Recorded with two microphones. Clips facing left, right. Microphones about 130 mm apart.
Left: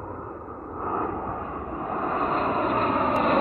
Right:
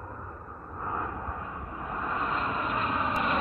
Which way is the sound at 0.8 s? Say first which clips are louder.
Left 6 dB; 35° left (ahead or behind).